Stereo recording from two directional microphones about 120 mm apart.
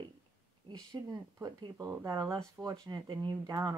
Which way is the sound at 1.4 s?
30° right (ahead or behind).